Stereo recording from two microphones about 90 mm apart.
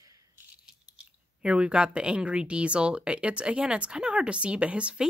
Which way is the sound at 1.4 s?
10° right (ahead or behind).